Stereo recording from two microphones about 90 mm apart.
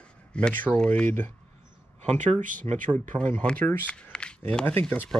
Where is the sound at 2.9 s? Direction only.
15° left (ahead or behind).